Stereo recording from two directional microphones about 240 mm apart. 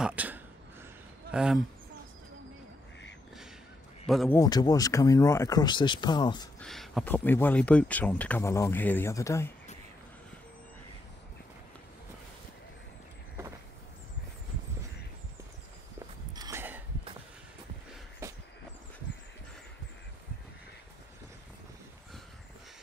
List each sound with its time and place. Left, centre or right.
0.0 s speech: centre
4.1 s speech: centre
4.4 s speech: centre
6.6 s speech: centre
16.3 s a sound: centre
18.2 s a sound: centre